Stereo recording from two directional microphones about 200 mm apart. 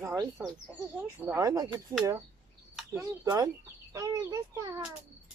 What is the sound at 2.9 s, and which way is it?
Speech, 15° right (ahead or behind).